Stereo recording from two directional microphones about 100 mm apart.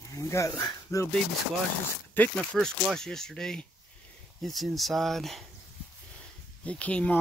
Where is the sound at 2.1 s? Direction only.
20° left (ahead or behind).